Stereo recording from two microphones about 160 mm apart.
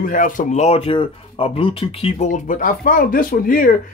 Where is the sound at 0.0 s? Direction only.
55° left (ahead or behind).